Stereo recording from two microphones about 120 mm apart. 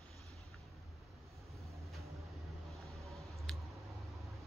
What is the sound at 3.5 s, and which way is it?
Clicking, 5° left (ahead or behind).